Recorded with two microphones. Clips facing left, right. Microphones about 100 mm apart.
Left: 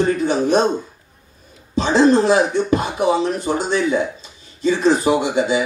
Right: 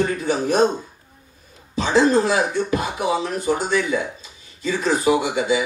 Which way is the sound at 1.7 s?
30° left (ahead or behind).